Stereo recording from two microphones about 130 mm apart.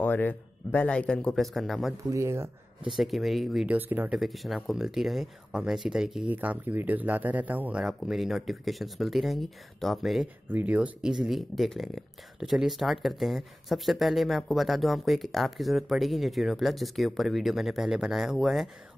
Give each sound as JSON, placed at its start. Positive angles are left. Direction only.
{"t": 0.0, "sound": "a man's voice", "side_deg": 15}
{"t": 2.0, "sound": "speech", "side_deg": -25}
{"t": 2.9, "sound": "speech", "side_deg": 0}
{"t": 3.7, "sound": "speech", "side_deg": -15}
{"t": 4.2, "sound": "speech", "side_deg": 0}
{"t": 10.5, "sound": "speech", "side_deg": -10}